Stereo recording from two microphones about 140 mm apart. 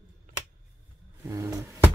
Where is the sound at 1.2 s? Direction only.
20° right (ahead or behind).